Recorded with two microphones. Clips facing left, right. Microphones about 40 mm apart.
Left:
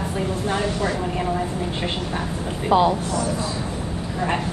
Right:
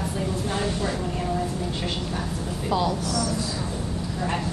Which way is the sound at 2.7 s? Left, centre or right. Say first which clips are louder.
Left 7 dB; left.